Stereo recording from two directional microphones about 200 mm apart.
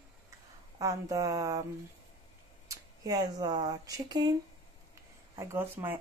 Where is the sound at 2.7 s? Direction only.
15° right (ahead or behind).